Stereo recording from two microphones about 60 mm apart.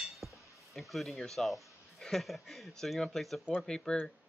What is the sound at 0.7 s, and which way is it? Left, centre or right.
Speech, centre.